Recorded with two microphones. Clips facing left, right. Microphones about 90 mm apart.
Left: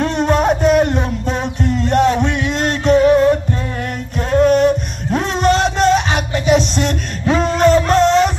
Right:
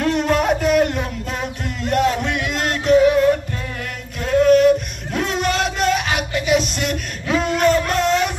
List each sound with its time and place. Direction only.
0.0 s music: 25° left (ahead or behind)